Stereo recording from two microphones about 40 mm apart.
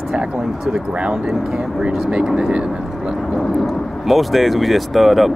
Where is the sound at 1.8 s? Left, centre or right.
Right.